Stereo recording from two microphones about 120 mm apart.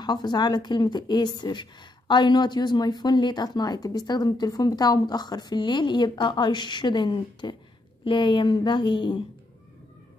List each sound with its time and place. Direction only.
0.0 s a woman's voice: 35° left (ahead or behind)